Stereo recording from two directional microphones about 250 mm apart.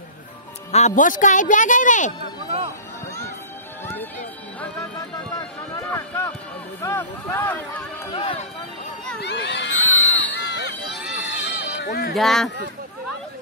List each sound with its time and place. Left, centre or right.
0.7 s speech: left
5.9 s a sound: centre
6.8 s speech: centre
8.1 s speech: left
9.2 s a sound: left
11.8 s speech: left
12.1 s speech: centre